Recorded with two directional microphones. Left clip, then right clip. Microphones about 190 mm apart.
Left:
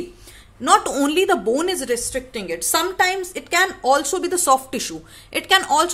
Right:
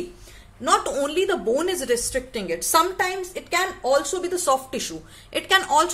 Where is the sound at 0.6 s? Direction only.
30° left (ahead or behind).